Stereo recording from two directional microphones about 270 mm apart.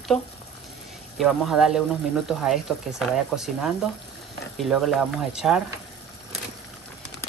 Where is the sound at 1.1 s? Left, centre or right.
Centre.